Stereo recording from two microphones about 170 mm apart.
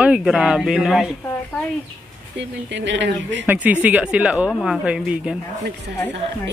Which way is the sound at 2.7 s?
90° right.